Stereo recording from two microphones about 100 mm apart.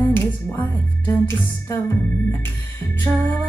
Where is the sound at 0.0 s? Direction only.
20° left (ahead or behind).